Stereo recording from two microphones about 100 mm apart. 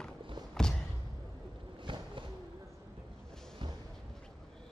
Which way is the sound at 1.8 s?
55° right (ahead or behind).